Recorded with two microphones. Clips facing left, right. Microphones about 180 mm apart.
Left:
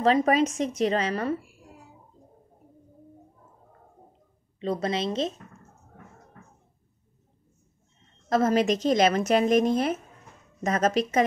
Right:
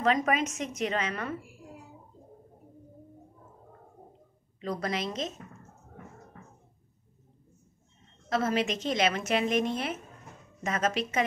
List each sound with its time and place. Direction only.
0.0 s a woman's voice: 35° left (ahead or behind)
4.6 s a woman's voice: 25° left (ahead or behind)
8.3 s a woman's voice: 40° left (ahead or behind)